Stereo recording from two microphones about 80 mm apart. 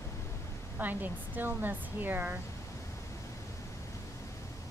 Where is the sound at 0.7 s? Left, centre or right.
Right.